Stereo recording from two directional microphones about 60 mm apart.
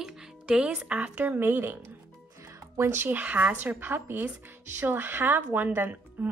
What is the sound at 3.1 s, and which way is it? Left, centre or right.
A woman's voice, right.